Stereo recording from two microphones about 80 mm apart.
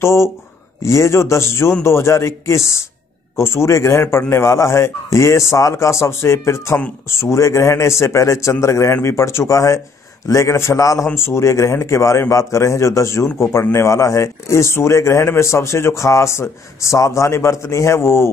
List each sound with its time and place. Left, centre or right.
0.0 s a man's voice: left